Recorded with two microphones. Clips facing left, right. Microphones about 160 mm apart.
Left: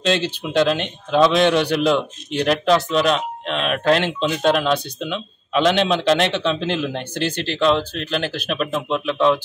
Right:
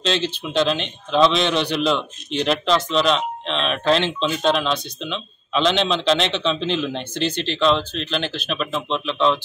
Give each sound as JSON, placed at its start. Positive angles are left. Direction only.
{"t": 0.1, "sound": "a man's voice", "side_deg": 50}